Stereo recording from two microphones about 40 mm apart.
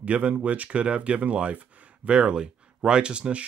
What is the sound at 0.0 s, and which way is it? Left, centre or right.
Speech, right.